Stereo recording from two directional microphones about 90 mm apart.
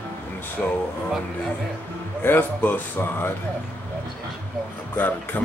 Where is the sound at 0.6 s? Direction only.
10° left (ahead or behind).